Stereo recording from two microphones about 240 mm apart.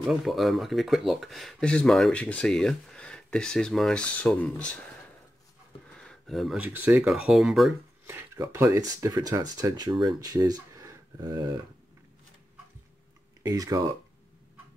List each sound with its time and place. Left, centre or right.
0.0 s speech: centre
13.4 s speech: centre